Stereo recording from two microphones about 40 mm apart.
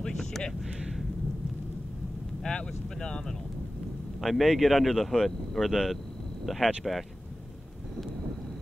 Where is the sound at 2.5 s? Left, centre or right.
Left.